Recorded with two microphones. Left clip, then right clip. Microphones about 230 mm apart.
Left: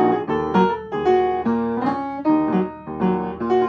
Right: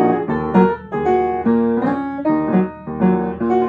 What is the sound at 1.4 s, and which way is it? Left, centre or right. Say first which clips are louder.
Music: right 4 dB; left.